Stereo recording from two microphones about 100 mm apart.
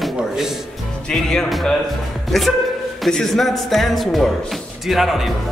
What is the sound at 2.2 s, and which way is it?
Music, centre (ahead or behind).